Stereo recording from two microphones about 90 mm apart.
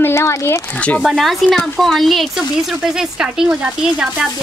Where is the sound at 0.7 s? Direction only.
15° left (ahead or behind).